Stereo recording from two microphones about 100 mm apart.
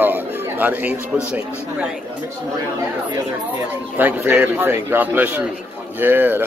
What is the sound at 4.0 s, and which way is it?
Speech, 20° right (ahead or behind).